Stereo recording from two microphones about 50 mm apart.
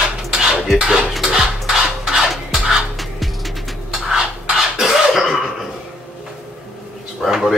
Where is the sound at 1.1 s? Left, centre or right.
Centre.